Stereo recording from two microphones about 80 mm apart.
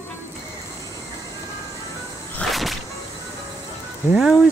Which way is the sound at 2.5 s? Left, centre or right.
Centre.